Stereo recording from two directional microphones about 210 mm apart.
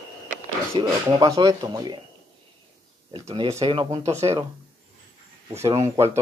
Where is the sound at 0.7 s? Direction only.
15° right (ahead or behind).